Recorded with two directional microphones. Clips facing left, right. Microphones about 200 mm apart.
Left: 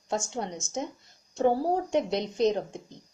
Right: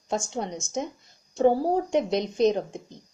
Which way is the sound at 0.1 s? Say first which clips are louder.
Right 2 dB; 20° right (ahead or behind).